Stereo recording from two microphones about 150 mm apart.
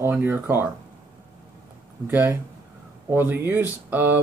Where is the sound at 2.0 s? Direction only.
10° right (ahead or behind).